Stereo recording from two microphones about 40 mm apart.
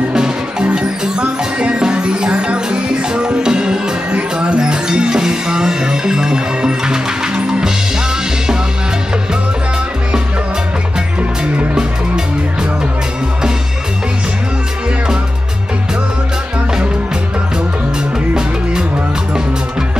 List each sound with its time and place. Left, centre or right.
0.1 s music: centre